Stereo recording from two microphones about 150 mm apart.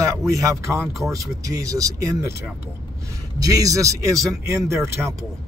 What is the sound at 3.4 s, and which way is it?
A man's voice, 25° right (ahead or behind).